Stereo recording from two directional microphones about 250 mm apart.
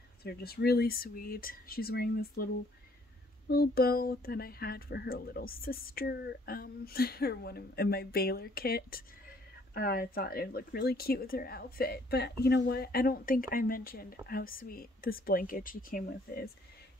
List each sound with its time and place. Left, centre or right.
0.2 s speech: left